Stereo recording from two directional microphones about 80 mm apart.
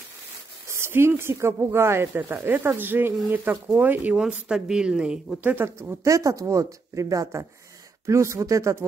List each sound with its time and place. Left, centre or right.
0.7 s speech: right
4.3 s speech: centre
5.4 s speech: right
6.0 s speech: right